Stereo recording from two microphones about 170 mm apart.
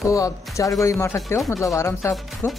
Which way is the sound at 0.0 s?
20° left (ahead or behind).